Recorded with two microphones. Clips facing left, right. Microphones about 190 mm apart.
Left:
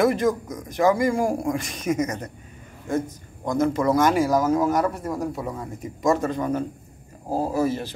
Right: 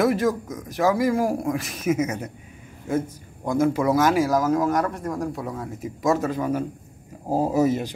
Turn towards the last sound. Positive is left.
turn(degrees=-20)  # may be behind; listen again after turning